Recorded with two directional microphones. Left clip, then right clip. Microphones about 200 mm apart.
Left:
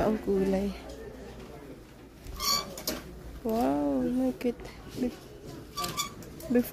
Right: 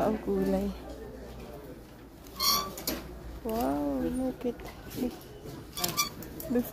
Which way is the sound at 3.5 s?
25° left (ahead or behind).